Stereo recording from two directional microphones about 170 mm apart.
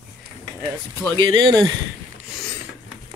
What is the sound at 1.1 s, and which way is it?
Speech, 25° right (ahead or behind).